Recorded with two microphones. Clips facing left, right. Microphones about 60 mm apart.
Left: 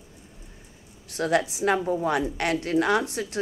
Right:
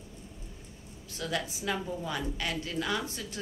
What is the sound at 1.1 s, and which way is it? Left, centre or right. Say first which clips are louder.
A woman's voice: left 10 dB; left.